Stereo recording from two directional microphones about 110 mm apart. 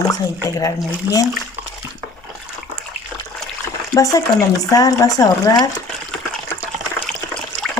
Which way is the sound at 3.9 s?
40° left (ahead or behind).